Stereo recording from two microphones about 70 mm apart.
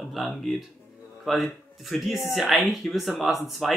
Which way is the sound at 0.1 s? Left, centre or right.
Centre.